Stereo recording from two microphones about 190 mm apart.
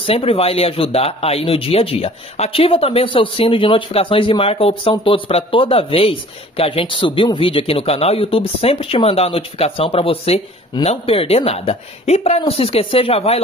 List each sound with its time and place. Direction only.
0.0 s speech: 30° left (ahead or behind)